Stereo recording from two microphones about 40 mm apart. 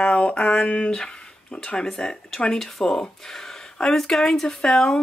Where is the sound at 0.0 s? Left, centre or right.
Left.